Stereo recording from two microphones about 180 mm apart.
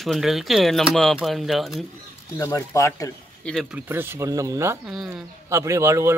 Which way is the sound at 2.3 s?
20° left (ahead or behind).